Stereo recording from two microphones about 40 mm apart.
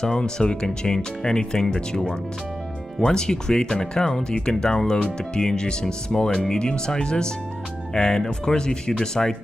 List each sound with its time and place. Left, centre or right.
0.0 s speech: centre